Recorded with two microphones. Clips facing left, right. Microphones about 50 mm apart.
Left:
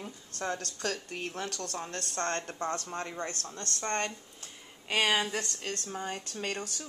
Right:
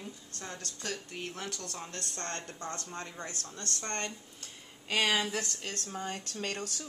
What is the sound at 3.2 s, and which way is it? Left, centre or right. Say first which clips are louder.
Speech: left 4 dB; left.